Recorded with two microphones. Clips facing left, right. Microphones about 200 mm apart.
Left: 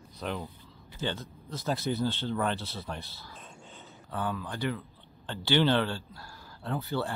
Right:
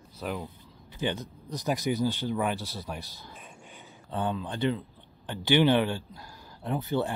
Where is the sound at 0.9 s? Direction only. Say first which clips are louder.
Right 3 dB; 15° right (ahead or behind).